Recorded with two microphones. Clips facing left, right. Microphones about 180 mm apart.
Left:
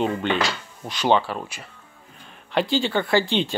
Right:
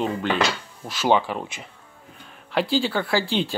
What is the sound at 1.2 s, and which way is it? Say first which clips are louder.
Speech: right 1 dB; 15° right (ahead or behind).